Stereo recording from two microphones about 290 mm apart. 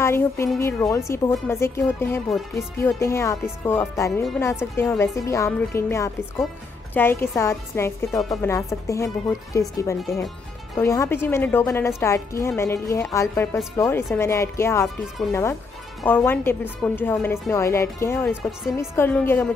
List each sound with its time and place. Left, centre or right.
0.0 s a woman's voice: centre